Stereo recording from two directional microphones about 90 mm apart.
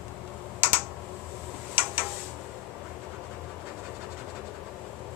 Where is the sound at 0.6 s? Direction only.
25° right (ahead or behind).